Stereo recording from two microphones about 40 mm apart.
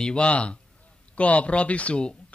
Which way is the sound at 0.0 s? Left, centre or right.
Left.